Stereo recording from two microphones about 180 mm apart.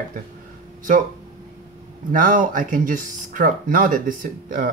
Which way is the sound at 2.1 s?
50° right (ahead or behind).